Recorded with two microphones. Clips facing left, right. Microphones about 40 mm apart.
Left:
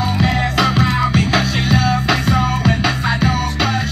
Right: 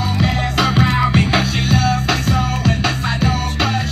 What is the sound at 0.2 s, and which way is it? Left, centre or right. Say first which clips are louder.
Music: left 1 dB; centre.